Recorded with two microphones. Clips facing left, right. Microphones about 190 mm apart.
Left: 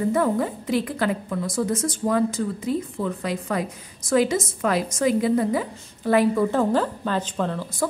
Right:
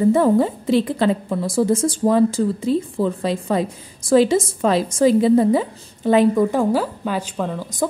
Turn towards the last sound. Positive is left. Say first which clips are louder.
# right 2 dB
turn(degrees=-15)  # may be behind; listen again after turning